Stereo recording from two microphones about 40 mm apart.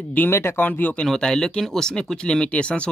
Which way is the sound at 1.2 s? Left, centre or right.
Centre.